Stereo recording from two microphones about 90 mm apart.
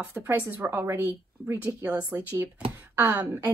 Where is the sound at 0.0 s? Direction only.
25° right (ahead or behind).